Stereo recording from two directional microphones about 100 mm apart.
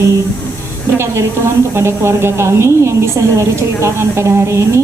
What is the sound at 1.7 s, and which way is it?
A woman's voice, 25° right (ahead or behind).